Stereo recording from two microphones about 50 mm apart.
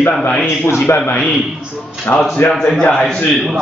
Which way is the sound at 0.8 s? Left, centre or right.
Left.